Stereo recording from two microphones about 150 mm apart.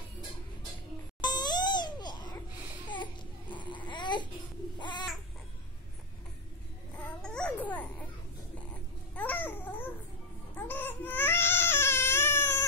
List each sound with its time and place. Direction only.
1.2 s babbling: 30° left (ahead or behind)
2.9 s baby cry: 30° left (ahead or behind)
7.2 s babbling: 5° left (ahead or behind)
9.1 s babbling: 10° left (ahead or behind)
10.7 s baby cry: 15° left (ahead or behind)